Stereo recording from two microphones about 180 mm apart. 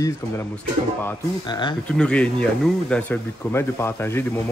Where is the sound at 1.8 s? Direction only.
5° left (ahead or behind).